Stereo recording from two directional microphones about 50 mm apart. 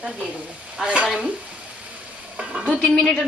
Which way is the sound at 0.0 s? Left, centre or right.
Right.